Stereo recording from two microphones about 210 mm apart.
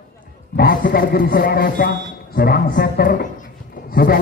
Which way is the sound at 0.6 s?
45° left (ahead or behind).